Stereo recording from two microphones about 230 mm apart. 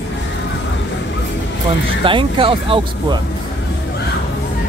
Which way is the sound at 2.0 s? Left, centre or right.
Right.